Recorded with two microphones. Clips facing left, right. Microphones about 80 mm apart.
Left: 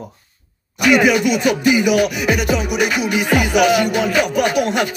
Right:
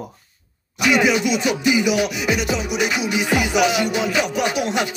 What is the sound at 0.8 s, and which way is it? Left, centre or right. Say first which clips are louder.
Music: left 4 dB; left.